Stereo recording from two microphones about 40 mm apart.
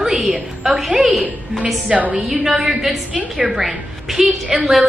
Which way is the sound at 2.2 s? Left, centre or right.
Centre.